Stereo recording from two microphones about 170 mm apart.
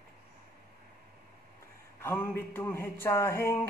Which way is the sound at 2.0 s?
15° left (ahead or behind).